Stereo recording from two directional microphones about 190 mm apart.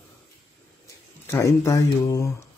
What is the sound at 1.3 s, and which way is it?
A man's voice, 15° left (ahead or behind).